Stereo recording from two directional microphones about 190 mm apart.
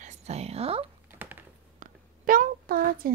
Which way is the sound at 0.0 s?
35° right (ahead or behind).